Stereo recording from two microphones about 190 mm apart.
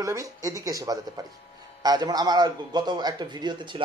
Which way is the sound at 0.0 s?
15° right (ahead or behind).